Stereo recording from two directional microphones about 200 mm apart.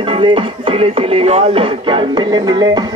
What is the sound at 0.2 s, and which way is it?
Music, 25° right (ahead or behind).